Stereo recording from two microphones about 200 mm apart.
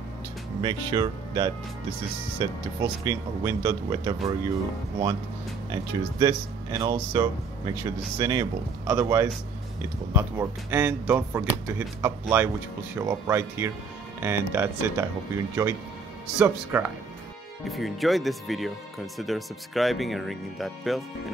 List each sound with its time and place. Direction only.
0.6 s speech: 20° right (ahead or behind)
5.7 s speech: 20° right (ahead or behind); by 21.0 s centre (ahead or behind)